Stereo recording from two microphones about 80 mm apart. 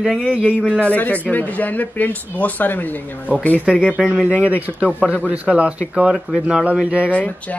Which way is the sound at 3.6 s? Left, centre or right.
Centre.